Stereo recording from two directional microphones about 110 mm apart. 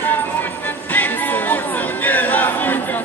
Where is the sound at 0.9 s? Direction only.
15° left (ahead or behind).